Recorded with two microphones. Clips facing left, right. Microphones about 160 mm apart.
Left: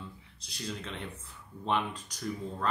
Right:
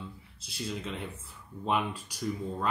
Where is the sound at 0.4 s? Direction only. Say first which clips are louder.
Right 3 dB; 5° right (ahead or behind).